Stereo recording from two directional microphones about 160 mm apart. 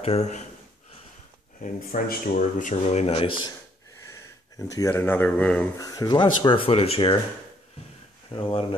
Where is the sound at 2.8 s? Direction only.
40° left (ahead or behind).